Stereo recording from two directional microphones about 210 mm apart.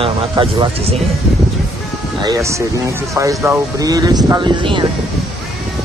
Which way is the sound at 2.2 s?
15° right (ahead or behind).